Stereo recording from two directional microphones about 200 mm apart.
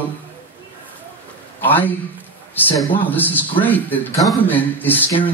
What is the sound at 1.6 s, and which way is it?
A man's voice, 10° left (ahead or behind).